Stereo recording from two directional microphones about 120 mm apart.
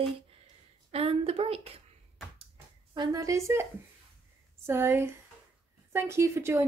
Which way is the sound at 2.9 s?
30° right (ahead or behind).